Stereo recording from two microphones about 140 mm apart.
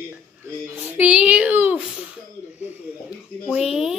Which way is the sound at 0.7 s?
10° right (ahead or behind).